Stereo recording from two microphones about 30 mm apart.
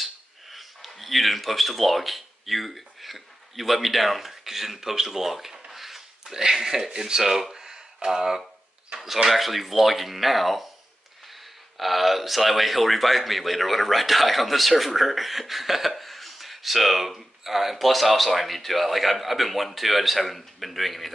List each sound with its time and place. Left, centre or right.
0.0 s speech: centre
7.5 s a sound: centre
9.0 s a man's voice: centre
11.8 s a man's voice: centre